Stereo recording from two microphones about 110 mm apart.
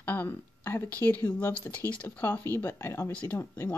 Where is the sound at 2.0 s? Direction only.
20° left (ahead or behind).